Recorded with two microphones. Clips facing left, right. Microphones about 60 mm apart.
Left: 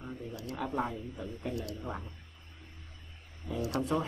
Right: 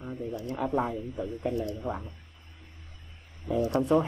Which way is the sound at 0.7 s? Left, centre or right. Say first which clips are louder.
Right 5 dB; right.